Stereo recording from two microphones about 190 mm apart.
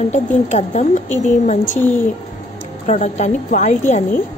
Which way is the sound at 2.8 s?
40° left (ahead or behind).